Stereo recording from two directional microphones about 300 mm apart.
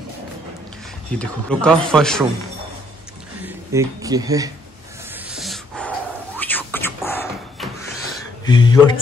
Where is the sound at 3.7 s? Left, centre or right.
Centre.